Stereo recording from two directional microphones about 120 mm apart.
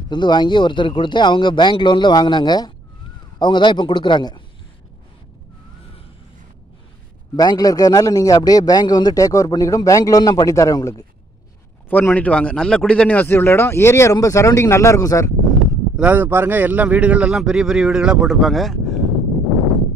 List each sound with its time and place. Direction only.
0.1 s speech: 40° left (ahead or behind)
7.3 s a man's voice: 35° left (ahead or behind)
11.9 s a man's voice: 15° left (ahead or behind)
16.0 s speech: 15° right (ahead or behind); by 18.9 s centre (ahead or behind)